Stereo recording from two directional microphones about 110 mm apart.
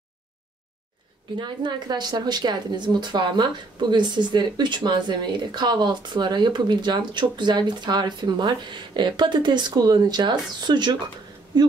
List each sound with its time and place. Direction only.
1.4 s speech: 45° right (ahead or behind)